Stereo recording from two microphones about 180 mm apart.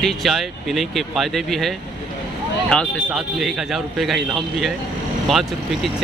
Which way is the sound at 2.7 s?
Centre (ahead or behind).